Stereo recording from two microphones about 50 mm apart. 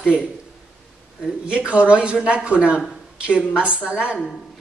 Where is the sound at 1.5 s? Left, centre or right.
Right.